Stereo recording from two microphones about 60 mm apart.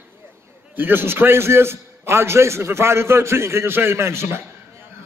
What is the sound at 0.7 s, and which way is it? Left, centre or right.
A man's voice, right.